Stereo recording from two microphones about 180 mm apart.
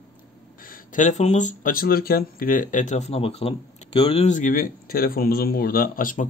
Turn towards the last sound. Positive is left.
turn(degrees=50)  # may be behind; listen again after turning